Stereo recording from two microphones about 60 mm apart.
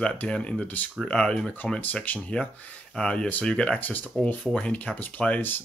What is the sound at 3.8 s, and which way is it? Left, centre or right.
Speech, left.